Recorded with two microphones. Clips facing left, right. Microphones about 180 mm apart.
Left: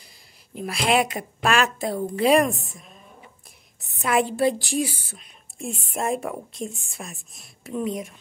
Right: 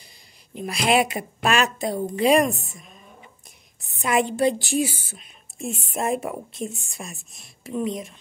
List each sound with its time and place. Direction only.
0.6 s a woman's voice: centre (ahead or behind)
4.0 s a woman's voice: centre (ahead or behind)